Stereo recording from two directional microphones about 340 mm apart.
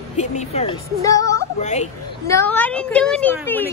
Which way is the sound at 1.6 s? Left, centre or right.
Centre.